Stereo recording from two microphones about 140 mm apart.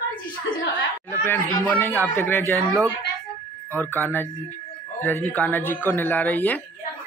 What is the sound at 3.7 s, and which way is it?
Speech, 15° left (ahead or behind).